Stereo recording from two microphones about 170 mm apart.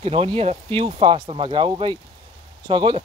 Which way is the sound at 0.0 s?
30° right (ahead or behind).